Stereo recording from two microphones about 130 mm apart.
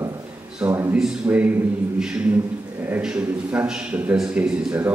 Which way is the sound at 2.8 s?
10° right (ahead or behind).